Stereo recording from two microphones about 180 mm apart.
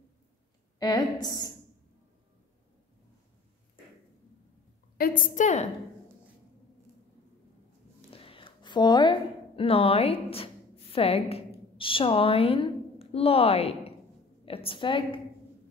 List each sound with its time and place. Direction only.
0.7 s a woman's voice: 20° left (ahead or behind)
4.9 s a woman's voice: 50° left (ahead or behind)
8.1 s a woman's voice: 30° left (ahead or behind)